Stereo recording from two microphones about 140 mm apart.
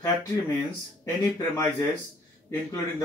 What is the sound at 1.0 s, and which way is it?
Speech, 20° left (ahead or behind).